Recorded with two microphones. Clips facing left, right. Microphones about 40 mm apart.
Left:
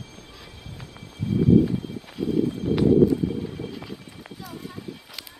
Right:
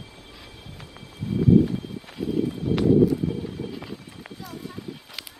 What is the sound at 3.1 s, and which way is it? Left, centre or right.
Horse, centre.